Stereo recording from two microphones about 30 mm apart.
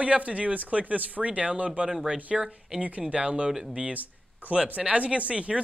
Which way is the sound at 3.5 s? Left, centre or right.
Right.